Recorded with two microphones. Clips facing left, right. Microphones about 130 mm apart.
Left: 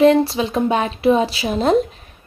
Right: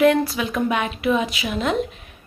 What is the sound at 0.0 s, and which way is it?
A woman's voice, 30° left (ahead or behind).